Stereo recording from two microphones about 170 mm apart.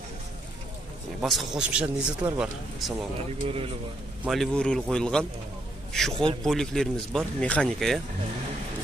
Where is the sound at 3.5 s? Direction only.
35° right (ahead or behind).